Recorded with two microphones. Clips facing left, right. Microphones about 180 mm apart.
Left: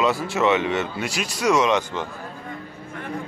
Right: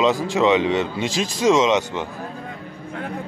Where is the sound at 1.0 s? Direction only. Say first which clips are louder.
Right 4 dB; 90° right.